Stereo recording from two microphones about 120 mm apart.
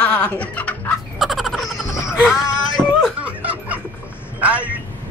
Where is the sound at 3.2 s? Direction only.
10° right (ahead or behind).